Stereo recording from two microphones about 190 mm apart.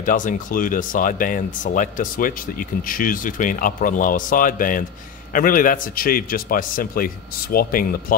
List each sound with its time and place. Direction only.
0.0 s speech: 45° left (ahead or behind)